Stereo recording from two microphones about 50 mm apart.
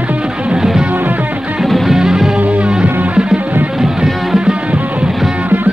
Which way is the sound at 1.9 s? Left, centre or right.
Centre.